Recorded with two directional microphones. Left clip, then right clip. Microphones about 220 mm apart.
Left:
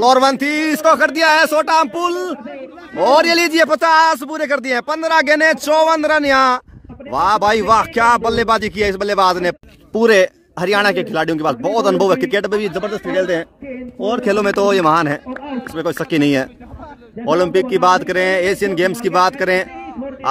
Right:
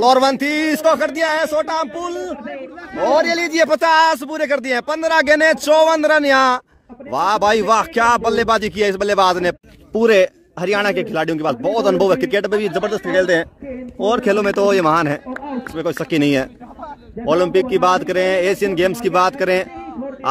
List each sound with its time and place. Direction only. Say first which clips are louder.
0.0 s speech: left 1 dB; 10° left (ahead or behind)
0.9 s a man's voice: left 5 dB; 30° left (ahead or behind); by 3.5 s 45° left (ahead or behind)
3.7 s speech: even; 10° left (ahead or behind)
12.7 s a man's voice: right 2 dB; centre (ahead or behind)
14.2 s speech: left 3 dB; 15° left (ahead or behind)